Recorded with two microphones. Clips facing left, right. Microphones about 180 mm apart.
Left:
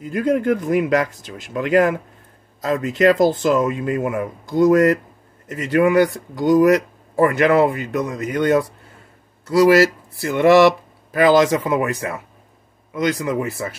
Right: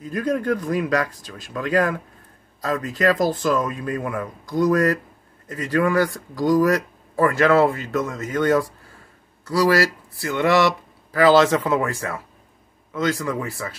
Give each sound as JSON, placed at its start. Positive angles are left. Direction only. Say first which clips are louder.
{"t": 0.0, "sound": "speech", "louder": "left 4 dB", "side_deg": 25}